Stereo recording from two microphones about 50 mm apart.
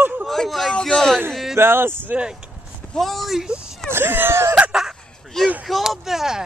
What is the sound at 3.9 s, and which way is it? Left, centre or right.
Speech, right.